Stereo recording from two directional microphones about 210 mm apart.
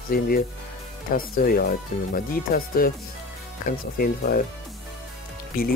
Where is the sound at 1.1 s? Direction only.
45° left (ahead or behind).